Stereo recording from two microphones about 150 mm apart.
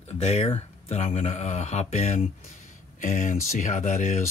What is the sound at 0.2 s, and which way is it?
Speech, 45° left (ahead or behind).